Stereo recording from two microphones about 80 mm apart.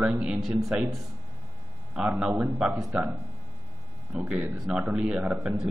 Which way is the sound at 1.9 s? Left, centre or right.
Centre.